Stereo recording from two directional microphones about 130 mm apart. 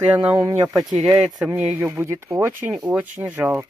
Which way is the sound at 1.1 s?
10° right (ahead or behind).